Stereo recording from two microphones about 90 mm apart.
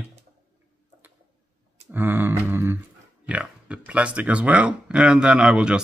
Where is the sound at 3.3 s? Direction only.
15° right (ahead or behind).